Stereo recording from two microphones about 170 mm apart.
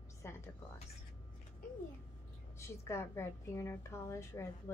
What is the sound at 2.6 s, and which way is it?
A woman's voice, 15° left (ahead or behind).